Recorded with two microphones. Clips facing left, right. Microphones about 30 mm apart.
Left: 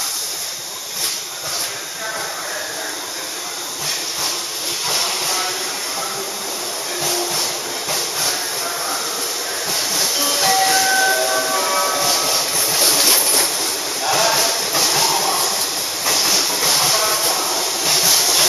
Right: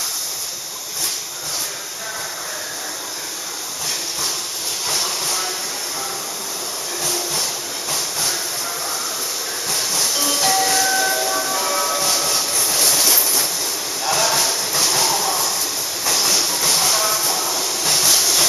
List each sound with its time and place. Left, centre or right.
4.8 s train: centre
7.0 s music: centre
7.9 s train: centre
14.0 s a sound: centre
16.0 s train: centre
17.3 s a sound: centre